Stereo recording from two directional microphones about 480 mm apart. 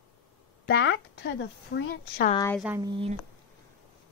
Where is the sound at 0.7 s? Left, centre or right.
Left; by 3.2 s centre.